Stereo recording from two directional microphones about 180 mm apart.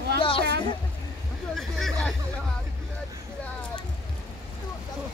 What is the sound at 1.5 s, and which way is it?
Speech, centre (ahead or behind).